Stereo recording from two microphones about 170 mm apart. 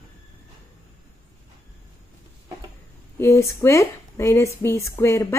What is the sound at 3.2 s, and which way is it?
Speech, 15° left (ahead or behind).